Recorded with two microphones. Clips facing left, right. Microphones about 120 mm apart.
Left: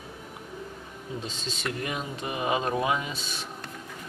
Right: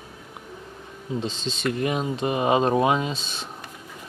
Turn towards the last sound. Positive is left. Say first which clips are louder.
# right 5 dB
turn(degrees=-25)  # may be behind; listen again after turning